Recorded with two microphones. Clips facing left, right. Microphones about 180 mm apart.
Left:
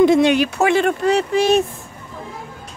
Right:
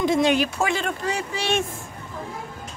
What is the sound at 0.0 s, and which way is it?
Speech, 65° left (ahead or behind).